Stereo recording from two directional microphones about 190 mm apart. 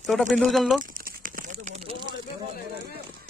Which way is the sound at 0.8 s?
45° right (ahead or behind).